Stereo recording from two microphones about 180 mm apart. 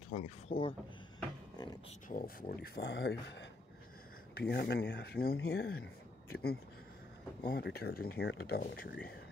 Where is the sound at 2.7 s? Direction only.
85° left.